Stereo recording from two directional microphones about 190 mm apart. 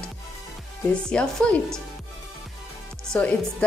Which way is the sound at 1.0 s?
5° left (ahead or behind).